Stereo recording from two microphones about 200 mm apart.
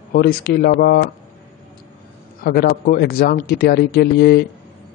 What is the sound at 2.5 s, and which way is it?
Speech, 50° left (ahead or behind).